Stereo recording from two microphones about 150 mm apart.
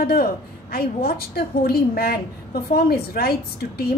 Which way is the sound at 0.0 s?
90° left.